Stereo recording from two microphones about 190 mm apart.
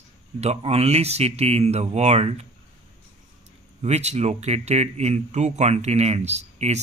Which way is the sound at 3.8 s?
35° right (ahead or behind).